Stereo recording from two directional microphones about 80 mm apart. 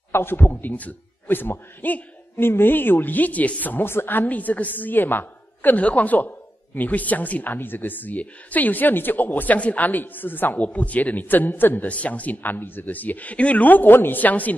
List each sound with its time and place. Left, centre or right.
0.1 s a man's voice: left